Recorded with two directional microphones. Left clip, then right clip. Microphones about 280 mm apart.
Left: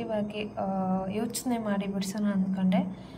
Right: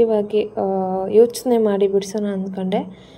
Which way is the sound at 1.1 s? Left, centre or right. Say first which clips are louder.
Right 18 dB; centre.